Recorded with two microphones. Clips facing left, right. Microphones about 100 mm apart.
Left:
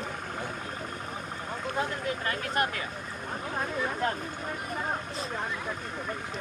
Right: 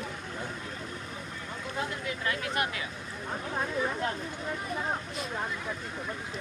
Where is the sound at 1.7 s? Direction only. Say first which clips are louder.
Left 3 dB; 40° left (ahead or behind).